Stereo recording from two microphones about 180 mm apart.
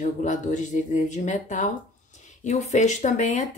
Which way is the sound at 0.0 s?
45° left (ahead or behind).